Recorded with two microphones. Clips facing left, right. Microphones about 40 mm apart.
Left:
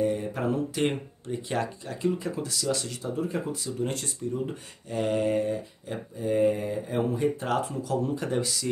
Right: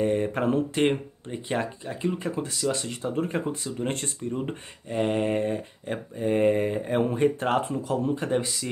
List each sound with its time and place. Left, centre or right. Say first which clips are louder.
0.0 s mantra: right 3 dB; right
0.8 s speech: right 3 dB; right
3.2 s speech: right 2 dB; right